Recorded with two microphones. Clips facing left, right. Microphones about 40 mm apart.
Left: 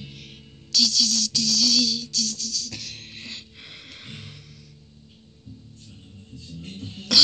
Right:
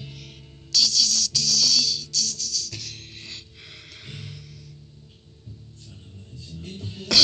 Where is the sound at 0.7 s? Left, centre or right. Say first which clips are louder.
Even; left.